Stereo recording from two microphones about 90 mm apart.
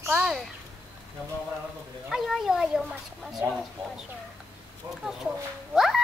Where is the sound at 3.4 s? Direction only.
25° right (ahead or behind).